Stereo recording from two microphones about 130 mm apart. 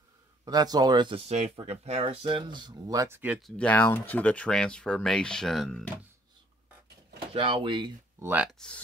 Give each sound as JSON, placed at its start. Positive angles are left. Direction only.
{"t": 0.5, "sound": "speech", "side_deg": -30}
{"t": 1.2, "sound": "speech", "side_deg": -60}
{"t": 3.3, "sound": "speech", "side_deg": 5}
{"t": 7.3, "sound": "speech", "side_deg": -40}
{"t": 8.2, "sound": "speech", "side_deg": -15}
{"t": 8.5, "sound": "speech", "side_deg": 5}